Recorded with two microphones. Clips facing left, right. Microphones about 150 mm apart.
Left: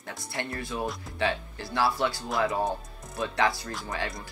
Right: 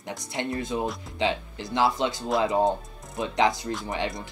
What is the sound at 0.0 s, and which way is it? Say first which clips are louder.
Speech: right 4 dB; 20° right (ahead or behind).